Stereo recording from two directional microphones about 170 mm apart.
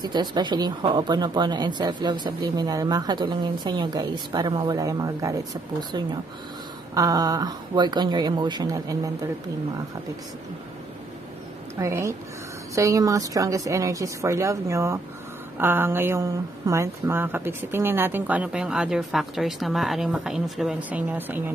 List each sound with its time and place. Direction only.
0.0 s speech: 25° right (ahead or behind)
11.8 s speech: 15° right (ahead or behind)